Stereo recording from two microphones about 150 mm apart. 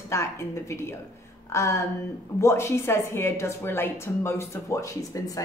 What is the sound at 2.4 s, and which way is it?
A woman's voice, 20° left (ahead or behind).